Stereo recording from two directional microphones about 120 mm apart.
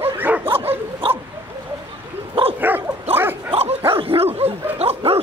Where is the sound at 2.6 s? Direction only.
15° right (ahead or behind).